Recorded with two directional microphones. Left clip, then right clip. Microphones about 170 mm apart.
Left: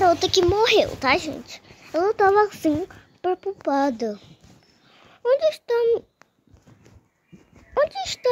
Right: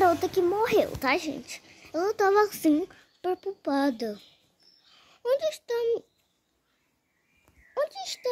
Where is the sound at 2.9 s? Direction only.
Centre (ahead or behind).